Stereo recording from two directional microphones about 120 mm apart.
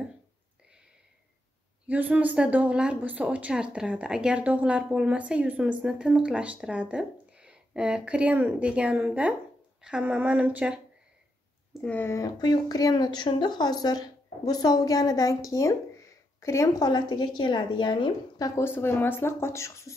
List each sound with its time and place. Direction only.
1.9 s a woman's voice: 10° right (ahead or behind)
11.8 s speech: 15° left (ahead or behind)
12.2 s a woman's voice: 35° left (ahead or behind)
18.4 s speech: 20° left (ahead or behind)